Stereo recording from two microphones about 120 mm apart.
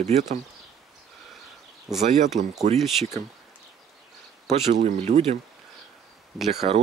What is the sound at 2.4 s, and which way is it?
Speech, 90° right.